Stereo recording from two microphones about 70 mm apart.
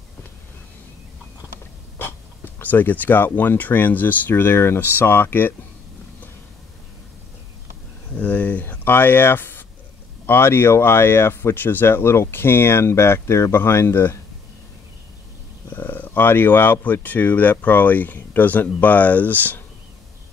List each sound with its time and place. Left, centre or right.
2.6 s speech: left
8.2 s speech: centre
15.7 s speech: left